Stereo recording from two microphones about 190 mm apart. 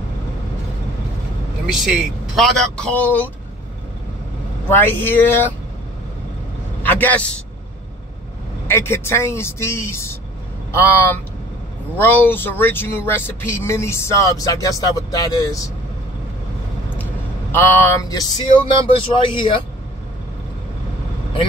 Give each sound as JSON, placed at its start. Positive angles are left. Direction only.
{"t": 1.7, "sound": "speech", "side_deg": 0}
{"t": 4.6, "sound": "speech", "side_deg": 10}
{"t": 6.8, "sound": "a man's voice", "side_deg": 10}
{"t": 8.6, "sound": "speech", "side_deg": 15}
{"t": 17.0, "sound": "speech", "side_deg": 10}